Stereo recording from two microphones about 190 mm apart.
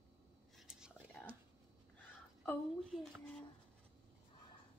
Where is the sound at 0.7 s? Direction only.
5° right (ahead or behind).